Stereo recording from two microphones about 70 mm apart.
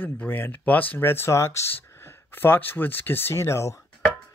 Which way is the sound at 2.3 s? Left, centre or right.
Left.